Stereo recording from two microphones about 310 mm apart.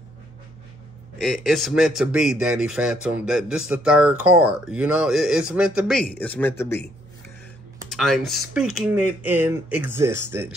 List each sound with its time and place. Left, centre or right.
1.1 s speech: centre
7.9 s speech: centre